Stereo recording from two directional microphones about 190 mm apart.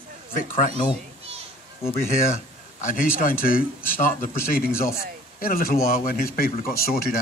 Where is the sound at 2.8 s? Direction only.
40° left (ahead or behind).